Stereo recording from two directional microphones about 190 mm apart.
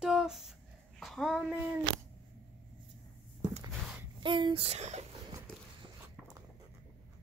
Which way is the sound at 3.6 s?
25° right (ahead or behind).